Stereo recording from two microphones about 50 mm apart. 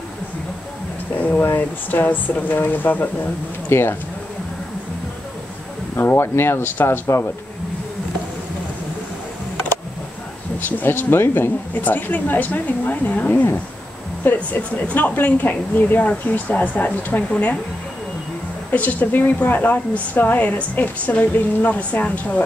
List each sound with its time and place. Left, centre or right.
1.1 s speech: left
3.6 s speech: left
5.9 s speech: left
10.6 s speech: left
18.7 s speech: left